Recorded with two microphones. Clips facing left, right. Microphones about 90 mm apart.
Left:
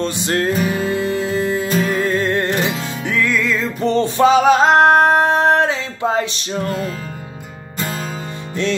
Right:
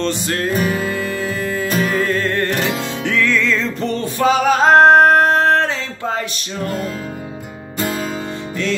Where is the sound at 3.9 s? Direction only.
25° left (ahead or behind).